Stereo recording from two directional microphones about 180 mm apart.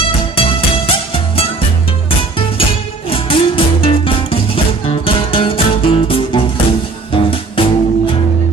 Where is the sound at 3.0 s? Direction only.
30° left (ahead or behind).